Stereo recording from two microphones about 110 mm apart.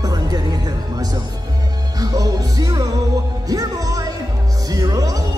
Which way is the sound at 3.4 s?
35° right (ahead or behind).